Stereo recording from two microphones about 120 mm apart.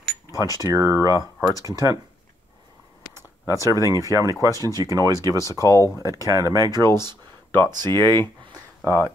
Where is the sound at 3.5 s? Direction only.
25° left (ahead or behind).